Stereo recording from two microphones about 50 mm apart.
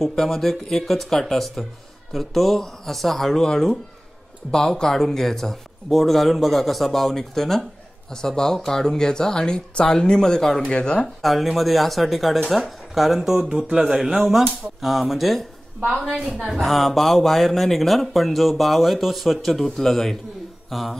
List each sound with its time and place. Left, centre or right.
0.0 s speech: centre
10.7 s speech: left
11.2 s speech: centre
16.4 s speech: centre